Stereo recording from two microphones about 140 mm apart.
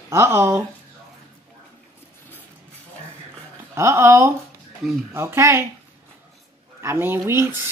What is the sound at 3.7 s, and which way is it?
Speech, 20° right (ahead or behind).